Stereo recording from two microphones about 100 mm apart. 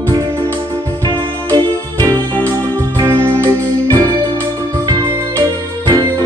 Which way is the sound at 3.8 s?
45° right (ahead or behind).